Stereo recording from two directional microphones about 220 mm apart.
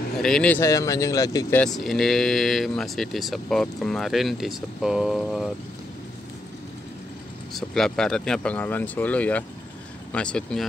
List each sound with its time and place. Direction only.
0.2 s speech: 5° left (ahead or behind)
1.6 s speech: centre (ahead or behind)
7.5 s speech: centre (ahead or behind)